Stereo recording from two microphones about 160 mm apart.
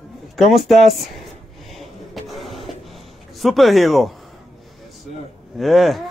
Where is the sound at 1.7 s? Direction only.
Centre (ahead or behind).